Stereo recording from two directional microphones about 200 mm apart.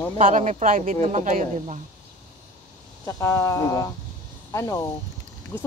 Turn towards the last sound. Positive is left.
turn(degrees=15)  # may be behind; listen again after turning